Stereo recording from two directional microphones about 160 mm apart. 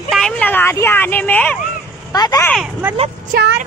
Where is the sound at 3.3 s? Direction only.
90° right.